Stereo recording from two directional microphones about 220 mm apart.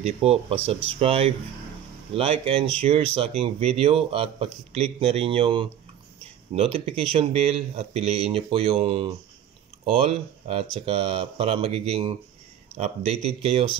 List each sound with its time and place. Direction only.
0.0 s speech: 25° right (ahead or behind)